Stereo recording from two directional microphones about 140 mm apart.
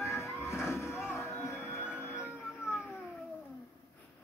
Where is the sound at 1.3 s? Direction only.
20° left (ahead or behind).